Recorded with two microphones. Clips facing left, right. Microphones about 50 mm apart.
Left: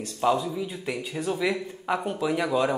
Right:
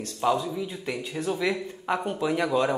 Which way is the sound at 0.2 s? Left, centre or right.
Centre.